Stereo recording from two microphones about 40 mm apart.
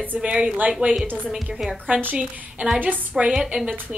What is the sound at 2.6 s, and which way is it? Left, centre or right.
Speech, right.